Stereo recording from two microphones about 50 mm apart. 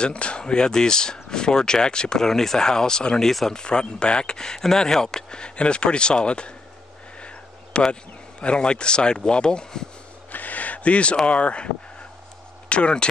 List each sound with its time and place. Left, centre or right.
0.0 s speech: left
10.3 s a sound: left
11.2 s speech: left